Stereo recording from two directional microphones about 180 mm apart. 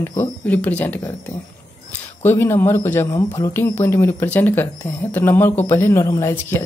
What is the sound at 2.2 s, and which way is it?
Speech, 10° left (ahead or behind).